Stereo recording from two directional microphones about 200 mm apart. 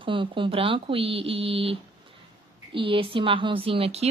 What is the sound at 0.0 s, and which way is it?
A woman's voice, 25° right (ahead or behind).